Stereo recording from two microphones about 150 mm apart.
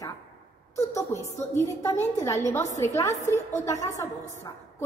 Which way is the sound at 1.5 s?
20° left (ahead or behind).